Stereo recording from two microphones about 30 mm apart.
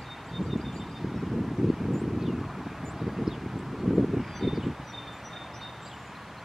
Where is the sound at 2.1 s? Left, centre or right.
Centre.